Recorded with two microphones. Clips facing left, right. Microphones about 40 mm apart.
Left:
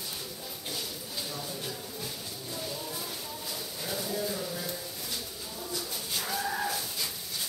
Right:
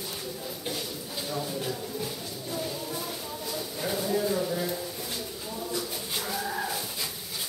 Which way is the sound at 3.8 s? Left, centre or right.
Centre.